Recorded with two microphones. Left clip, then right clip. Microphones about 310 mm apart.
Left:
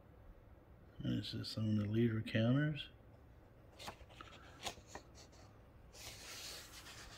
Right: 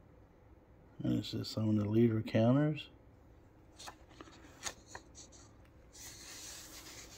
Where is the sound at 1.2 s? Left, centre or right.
Centre.